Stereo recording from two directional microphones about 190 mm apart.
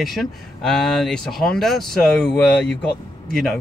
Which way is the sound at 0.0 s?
Centre (ahead or behind).